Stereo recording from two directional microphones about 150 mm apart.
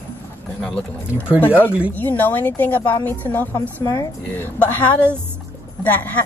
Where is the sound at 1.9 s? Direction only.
10° left (ahead or behind).